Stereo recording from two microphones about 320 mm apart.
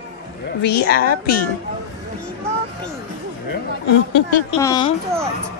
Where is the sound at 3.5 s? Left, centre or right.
Left.